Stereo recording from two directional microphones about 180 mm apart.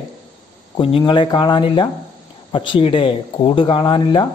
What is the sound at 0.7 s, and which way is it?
A man's voice, 30° left (ahead or behind).